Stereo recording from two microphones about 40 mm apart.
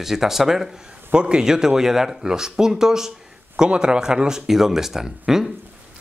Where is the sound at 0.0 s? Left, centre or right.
Centre.